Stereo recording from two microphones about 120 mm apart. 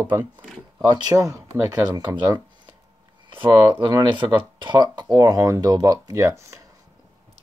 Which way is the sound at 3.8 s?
40° right (ahead or behind).